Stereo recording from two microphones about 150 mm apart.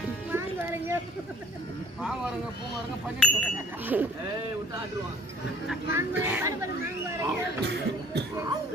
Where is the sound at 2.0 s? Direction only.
5° right (ahead or behind).